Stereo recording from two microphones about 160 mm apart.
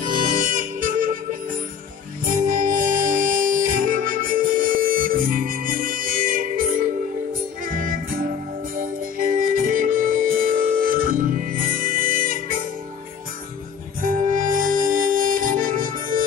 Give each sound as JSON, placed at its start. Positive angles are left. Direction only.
{"t": 0.0, "sound": "music", "side_deg": -60}
{"t": 2.2, "sound": "music", "side_deg": -60}
{"t": 14.0, "sound": "music", "side_deg": -55}